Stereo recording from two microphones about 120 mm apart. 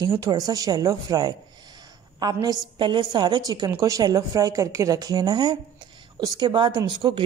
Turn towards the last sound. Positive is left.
turn(degrees=-40)  # may be behind; listen again after turning